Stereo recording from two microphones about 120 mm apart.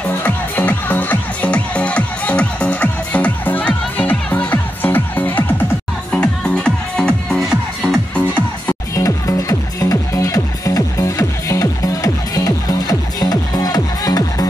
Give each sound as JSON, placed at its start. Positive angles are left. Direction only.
{"t": 0.1, "sound": "music", "side_deg": 15}
{"t": 6.1, "sound": "music", "side_deg": 5}
{"t": 8.9, "sound": "music", "side_deg": 30}